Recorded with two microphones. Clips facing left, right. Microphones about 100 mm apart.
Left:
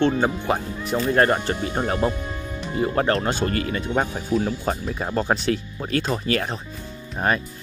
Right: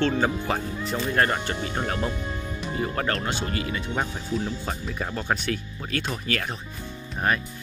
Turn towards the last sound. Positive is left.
turn(degrees=30)  # may be behind; listen again after turning